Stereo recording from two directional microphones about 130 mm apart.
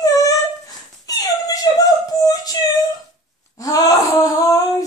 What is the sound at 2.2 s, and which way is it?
Music, 30° left (ahead or behind).